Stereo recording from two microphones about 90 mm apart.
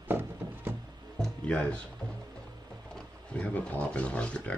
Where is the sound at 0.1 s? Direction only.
25° right (ahead or behind).